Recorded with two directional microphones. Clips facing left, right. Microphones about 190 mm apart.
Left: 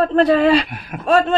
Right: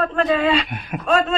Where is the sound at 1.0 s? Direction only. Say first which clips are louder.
Left 3 dB; 35° left (ahead or behind).